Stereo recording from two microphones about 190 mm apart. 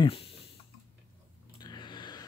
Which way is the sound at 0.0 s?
30° left (ahead or behind).